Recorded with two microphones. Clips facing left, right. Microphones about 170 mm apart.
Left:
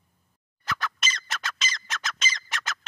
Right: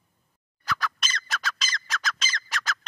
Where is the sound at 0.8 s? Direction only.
Centre (ahead or behind).